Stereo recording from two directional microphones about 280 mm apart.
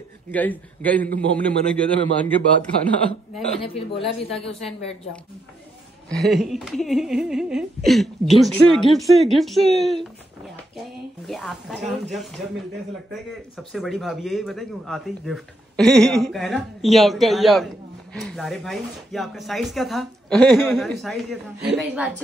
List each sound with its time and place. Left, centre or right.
0.3 s speech: centre
3.5 s speech: left
6.0 s speech: centre
11.2 s speech: centre
13.3 s speech: centre